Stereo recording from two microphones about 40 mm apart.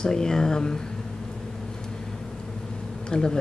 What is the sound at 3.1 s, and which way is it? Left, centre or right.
Speech, left.